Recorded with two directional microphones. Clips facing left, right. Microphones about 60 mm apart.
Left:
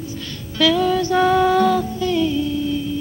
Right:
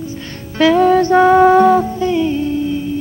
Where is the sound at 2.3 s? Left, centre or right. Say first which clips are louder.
Right 3 dB; right.